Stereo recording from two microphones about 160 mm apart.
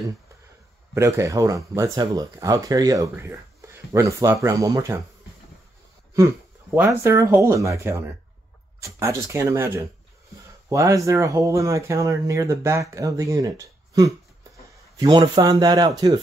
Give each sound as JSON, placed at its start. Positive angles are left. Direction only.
{"t": 0.9, "sound": "speech", "side_deg": -15}
{"t": 6.1, "sound": "a sound", "side_deg": -15}
{"t": 7.0, "sound": "speech", "side_deg": -20}